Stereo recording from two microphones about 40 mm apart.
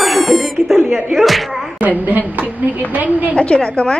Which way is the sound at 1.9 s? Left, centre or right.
Right.